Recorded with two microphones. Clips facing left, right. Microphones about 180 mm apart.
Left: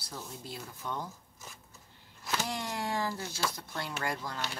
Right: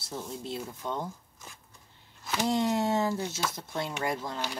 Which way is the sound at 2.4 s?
25° right (ahead or behind).